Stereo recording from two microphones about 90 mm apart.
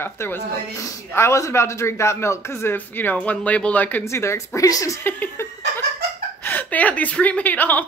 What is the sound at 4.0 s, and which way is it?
Speech, 30° left (ahead or behind).